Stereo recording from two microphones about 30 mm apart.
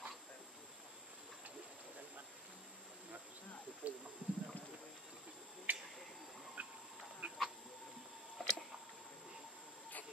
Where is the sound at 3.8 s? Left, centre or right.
Right.